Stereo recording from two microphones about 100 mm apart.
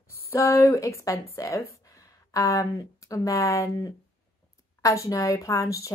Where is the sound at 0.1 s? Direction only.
25° left (ahead or behind).